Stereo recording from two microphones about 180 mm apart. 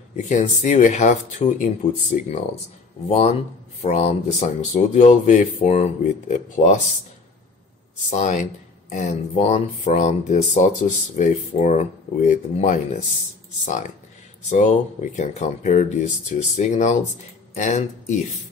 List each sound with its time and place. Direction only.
0.1 s speech: 40° left (ahead or behind)
8.1 s speech: 40° left (ahead or behind)
14.5 s speech: 40° left (ahead or behind)